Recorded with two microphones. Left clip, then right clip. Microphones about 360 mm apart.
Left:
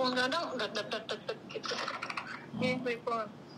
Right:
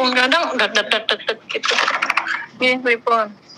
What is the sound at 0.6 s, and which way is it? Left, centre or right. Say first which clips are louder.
Speech: right 19 dB; right.